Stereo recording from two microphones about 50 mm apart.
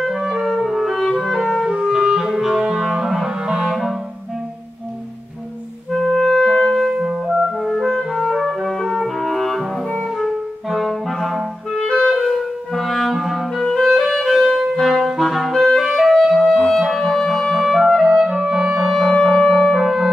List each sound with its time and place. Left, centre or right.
0.0 s clarinet: centre
0.5 s music: centre
1.2 s clarinet: centre
6.1 s clarinet: centre
7.2 s music: centre
7.8 s music: centre
10.1 s clarinet: centre
11.8 s clarinet: centre
12.1 s clarinet: centre
18.9 s music: centre